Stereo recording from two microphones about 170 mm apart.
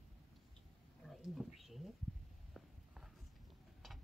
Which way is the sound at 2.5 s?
Centre (ahead or behind).